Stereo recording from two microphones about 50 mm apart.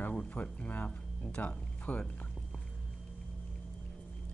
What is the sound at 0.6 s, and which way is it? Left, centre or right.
Speech, left.